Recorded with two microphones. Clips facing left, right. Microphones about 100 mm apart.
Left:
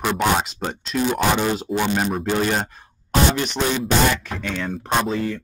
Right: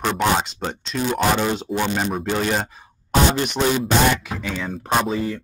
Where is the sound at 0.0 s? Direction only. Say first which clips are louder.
Even; 5° left (ahead or behind).